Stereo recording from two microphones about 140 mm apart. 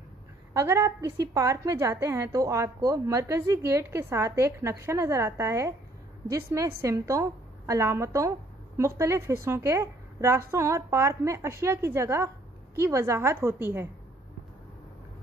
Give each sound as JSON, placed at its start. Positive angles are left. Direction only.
{"t": 0.5, "sound": "a woman's voice", "side_deg": -20}